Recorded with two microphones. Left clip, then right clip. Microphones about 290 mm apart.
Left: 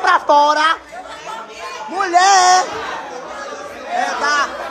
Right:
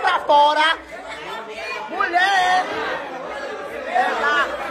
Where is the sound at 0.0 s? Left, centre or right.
Left.